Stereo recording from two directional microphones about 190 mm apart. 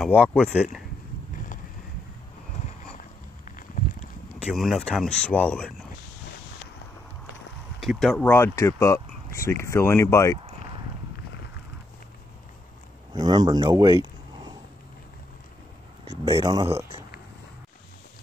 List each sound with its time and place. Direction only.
0.0 s speech: 5° left (ahead or behind)
0.5 s speech: 5° right (ahead or behind)
4.5 s speech: centre (ahead or behind)
7.8 s speech: centre (ahead or behind)
13.1 s speech: 20° right (ahead or behind)
16.1 s speech: 20° right (ahead or behind)